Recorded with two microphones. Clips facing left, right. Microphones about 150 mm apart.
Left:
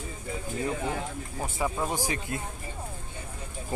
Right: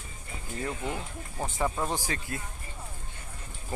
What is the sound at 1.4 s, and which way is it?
Speech, 10° left (ahead or behind).